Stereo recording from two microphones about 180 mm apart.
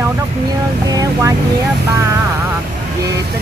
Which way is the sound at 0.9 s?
20° right (ahead or behind).